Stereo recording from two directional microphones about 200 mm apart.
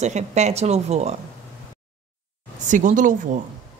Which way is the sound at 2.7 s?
40° right (ahead or behind).